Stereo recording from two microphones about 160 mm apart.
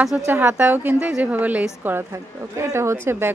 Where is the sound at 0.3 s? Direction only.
10° right (ahead or behind).